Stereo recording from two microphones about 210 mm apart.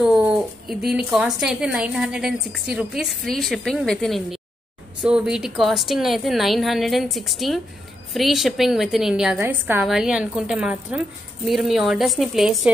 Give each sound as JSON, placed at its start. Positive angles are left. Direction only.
{"t": 0.0, "sound": "a woman's voice", "side_deg": 0}